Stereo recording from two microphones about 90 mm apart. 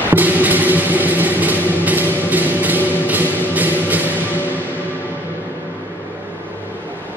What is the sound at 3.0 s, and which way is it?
Music, 20° right (ahead or behind).